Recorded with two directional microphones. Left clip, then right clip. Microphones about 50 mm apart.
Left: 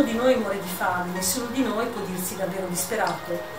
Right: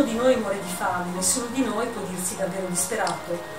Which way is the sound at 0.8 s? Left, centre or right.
Centre.